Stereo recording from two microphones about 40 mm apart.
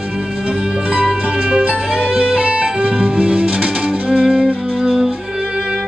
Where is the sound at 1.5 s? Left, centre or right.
Right.